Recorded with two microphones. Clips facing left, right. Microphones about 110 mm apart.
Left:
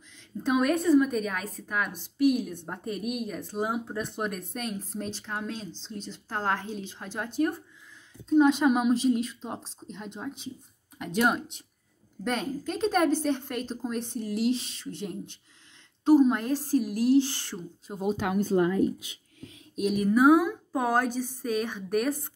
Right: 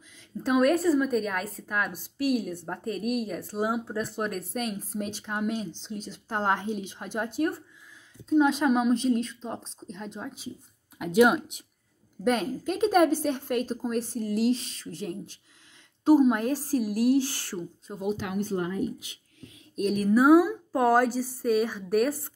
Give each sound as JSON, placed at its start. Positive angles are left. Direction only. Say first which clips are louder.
{"t": 0.4, "sound": "a woman's voice", "louder": "right 2 dB", "side_deg": 0}
{"t": 17.9, "sound": "speech", "louder": "left 3 dB", "side_deg": 15}
{"t": 19.8, "sound": "a woman's voice", "louder": "even", "side_deg": 5}